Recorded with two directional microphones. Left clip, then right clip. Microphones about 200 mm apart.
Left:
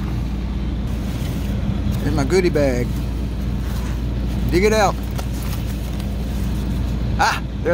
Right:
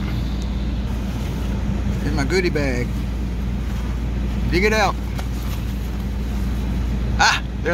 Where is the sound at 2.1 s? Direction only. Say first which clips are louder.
Left 3 dB; 15° left (ahead or behind).